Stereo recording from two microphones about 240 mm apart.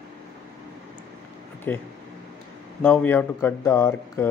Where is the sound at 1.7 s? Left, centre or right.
Centre.